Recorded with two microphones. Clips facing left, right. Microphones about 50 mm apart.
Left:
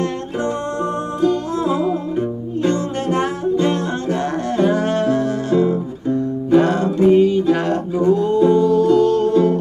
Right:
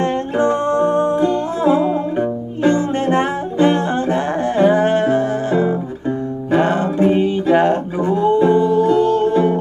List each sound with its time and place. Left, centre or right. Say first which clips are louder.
0.0 s music: right 5 dB; right